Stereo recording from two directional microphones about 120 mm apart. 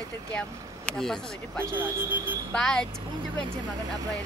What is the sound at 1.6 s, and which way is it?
Speech, 20° right (ahead or behind).